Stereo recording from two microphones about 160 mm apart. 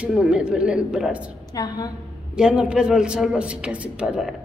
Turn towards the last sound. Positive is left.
turn(degrees=-5)  # may be behind; listen again after turning